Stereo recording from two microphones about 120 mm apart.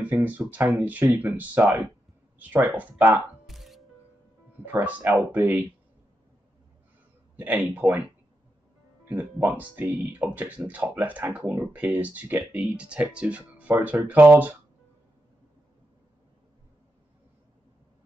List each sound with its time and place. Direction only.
0.0 s speech: 15° right (ahead or behind)
3.4 s music: centre (ahead or behind)
4.7 s speech: 15° right (ahead or behind)
7.3 s speech: 15° right (ahead or behind)
9.1 s speech: 15° right (ahead or behind)